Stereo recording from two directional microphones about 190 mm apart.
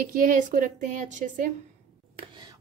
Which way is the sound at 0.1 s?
45° right (ahead or behind).